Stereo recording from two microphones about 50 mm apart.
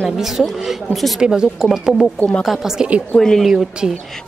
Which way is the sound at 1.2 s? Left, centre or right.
Centre.